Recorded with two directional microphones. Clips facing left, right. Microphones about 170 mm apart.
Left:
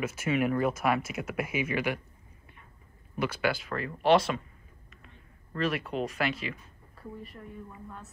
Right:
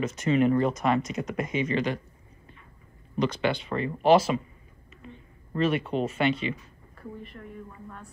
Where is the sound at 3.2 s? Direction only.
5° left (ahead or behind).